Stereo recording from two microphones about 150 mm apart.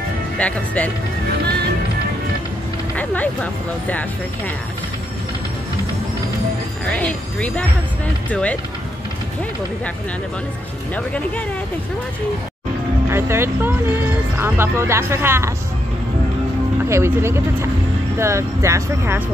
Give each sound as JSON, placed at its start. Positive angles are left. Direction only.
{"t": 0.4, "sound": "speech", "side_deg": 10}
{"t": 3.0, "sound": "a sound", "side_deg": 10}
{"t": 6.9, "sound": "speech", "side_deg": 10}
{"t": 11.0, "sound": "speech", "side_deg": 10}
{"t": 13.1, "sound": "speech", "side_deg": -15}
{"t": 16.9, "sound": "speech", "side_deg": -15}